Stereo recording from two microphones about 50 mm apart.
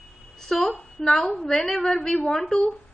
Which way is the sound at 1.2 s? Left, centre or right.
Centre.